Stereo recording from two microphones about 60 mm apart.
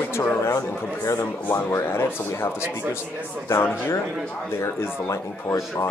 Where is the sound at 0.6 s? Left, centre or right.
Left.